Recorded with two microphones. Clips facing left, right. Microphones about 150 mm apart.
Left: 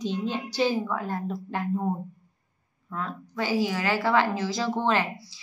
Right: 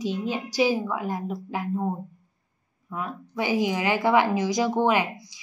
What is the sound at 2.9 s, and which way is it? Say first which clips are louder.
Speech: right 1 dB; 15° right (ahead or behind).